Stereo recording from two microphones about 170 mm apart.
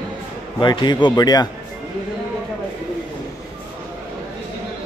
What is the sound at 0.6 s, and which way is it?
Speech, 25° left (ahead or behind).